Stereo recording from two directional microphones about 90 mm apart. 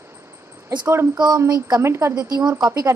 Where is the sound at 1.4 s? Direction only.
45° right (ahead or behind).